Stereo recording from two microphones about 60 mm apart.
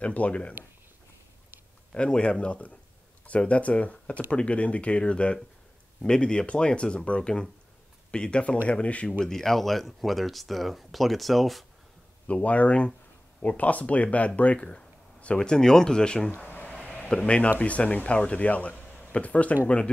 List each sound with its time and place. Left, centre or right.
0.0 s speech: left
1.9 s speech: centre
9.2 s speech: centre
12.3 s speech: left
16.4 s a sound: left
17.2 s speech: centre